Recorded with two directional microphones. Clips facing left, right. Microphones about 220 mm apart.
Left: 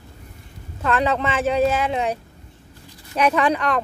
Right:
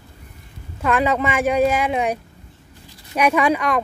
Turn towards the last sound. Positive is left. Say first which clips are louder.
# right 2 dB
turn(degrees=-10)  # may be behind; listen again after turning